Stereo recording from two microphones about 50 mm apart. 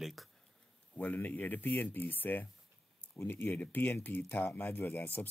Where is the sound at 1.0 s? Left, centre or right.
Left.